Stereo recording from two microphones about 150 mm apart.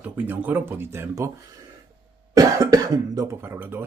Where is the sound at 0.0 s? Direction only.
10° right (ahead or behind).